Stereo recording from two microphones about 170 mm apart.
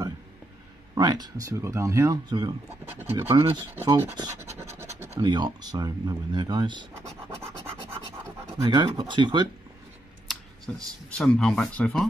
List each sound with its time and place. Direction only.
0.9 s speech: 25° right (ahead or behind)
2.8 s speech: 10° right (ahead or behind)
5.2 s speech: 25° right (ahead or behind)
7.2 s scratch: 15° right (ahead or behind)
8.5 s speech: 25° right (ahead or behind)
10.7 s speech: 5° left (ahead or behind)